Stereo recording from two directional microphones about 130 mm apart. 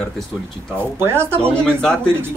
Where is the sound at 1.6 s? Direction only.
5° left (ahead or behind).